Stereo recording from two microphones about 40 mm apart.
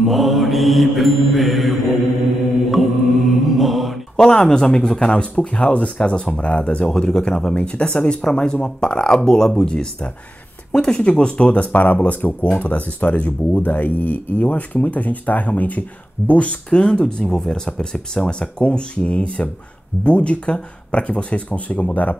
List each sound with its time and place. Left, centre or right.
0.0 s mantra: centre
4.2 s speech: centre; by 22.1 s left